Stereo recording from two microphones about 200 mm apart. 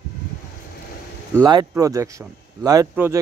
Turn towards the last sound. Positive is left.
turn(degrees=-10)  # may be behind; listen again after turning